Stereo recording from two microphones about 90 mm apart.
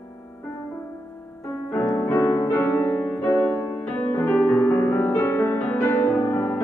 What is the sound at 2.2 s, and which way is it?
Music, 35° left (ahead or behind).